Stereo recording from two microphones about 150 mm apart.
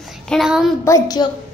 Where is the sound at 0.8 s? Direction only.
25° left (ahead or behind).